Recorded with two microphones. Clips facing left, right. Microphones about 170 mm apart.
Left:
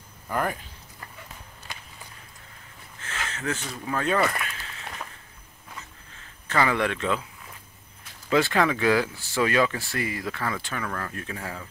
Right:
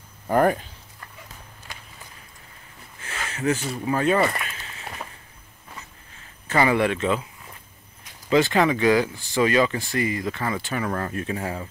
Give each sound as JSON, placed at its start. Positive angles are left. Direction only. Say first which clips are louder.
{"t": 0.3, "sound": "speech", "louder": "right 9 dB", "side_deg": -45}
{"t": 3.0, "sound": "a sound", "louder": "right 5 dB", "side_deg": -10}
{"t": 3.8, "sound": "speech", "louder": "right 4 dB", "side_deg": -10}
{"t": 4.3, "sound": "a sound", "louder": "right 1 dB", "side_deg": 0}
{"t": 6.5, "sound": "speech", "louder": "right 4 dB", "side_deg": -15}
{"t": 8.3, "sound": "speech", "louder": "right 3 dB", "side_deg": 0}
{"t": 10.8, "sound": "speech", "louder": "right 6 dB", "side_deg": -30}